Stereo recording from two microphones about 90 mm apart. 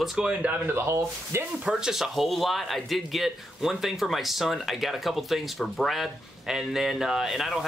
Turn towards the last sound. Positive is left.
turn(degrees=0)  # may be behind; listen again after turning